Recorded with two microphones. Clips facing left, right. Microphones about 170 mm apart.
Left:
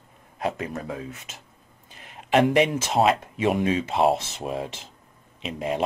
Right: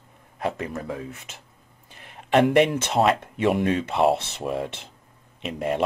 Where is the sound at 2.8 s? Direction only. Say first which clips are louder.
Even; 60° right (ahead or behind).